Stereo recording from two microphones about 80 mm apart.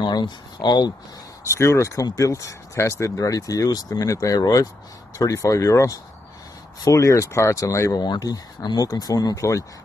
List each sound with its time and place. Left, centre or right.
0.0 s speech: left
1.4 s speech: left
8.0 s speech: left